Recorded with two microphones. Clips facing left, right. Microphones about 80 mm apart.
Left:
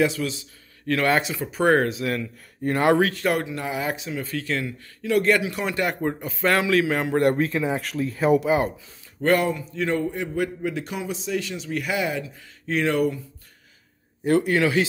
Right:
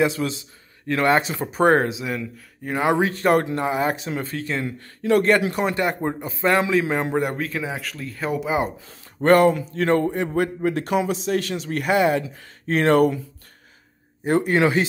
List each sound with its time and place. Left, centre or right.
0.0 s a man's voice: right
2.0 s speech: centre
3.0 s a man's voice: right
4.7 s a man's voice: right
5.8 s speech: right
7.2 s speech: centre
9.2 s a man's voice: right
9.8 s a man's voice: right
14.2 s a man's voice: right